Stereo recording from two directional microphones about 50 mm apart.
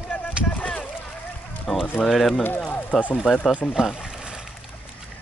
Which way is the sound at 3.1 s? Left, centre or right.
Centre.